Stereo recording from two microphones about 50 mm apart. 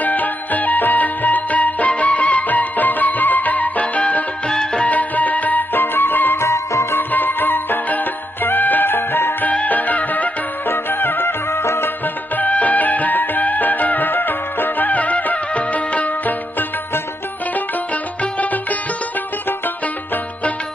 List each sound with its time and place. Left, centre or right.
0.0 s music: left
4.5 s music: centre
4.8 s music: left
6.3 s music: left
7.0 s music: left
9.5 s music: left
10.9 s music: left
11.5 s music: left
12.4 s music: left
18.2 s music: left